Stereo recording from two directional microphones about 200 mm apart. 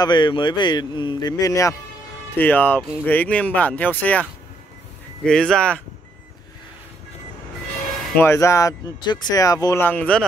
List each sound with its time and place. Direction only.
0.0 s speech: 20° left (ahead or behind); by 5.8 s 5° left (ahead or behind)
8.2 s speech: 15° left (ahead or behind)